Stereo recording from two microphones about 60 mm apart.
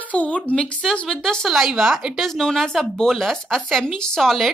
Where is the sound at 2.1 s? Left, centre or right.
Centre.